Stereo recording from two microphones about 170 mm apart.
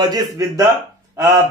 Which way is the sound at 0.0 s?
20° right (ahead or behind).